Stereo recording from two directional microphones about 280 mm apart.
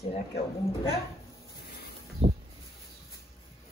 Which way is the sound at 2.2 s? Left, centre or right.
Centre.